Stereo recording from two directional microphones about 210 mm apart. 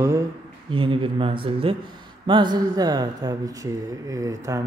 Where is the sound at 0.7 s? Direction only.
25° right (ahead or behind).